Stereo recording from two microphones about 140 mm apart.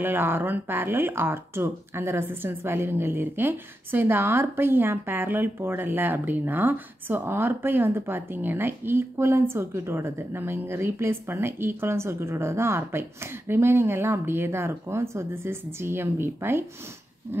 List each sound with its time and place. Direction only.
0.0 s speech: 15° right (ahead or behind)